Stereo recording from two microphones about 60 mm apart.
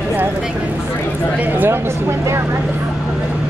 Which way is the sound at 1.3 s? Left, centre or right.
Right.